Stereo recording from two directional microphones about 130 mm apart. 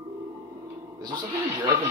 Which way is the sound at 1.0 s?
35° right (ahead or behind).